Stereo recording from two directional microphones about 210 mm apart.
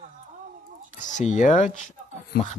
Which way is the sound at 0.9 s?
35° left (ahead or behind).